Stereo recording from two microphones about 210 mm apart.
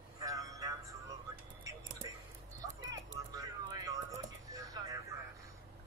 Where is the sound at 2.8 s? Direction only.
20° right (ahead or behind).